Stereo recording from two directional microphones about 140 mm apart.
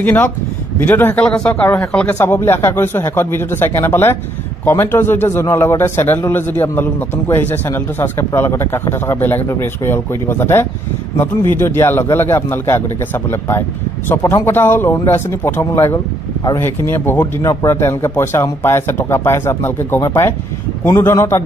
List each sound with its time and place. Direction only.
0.0 s a man's voice: 10° left (ahead or behind)
1.5 s a man's voice: 20° left (ahead or behind)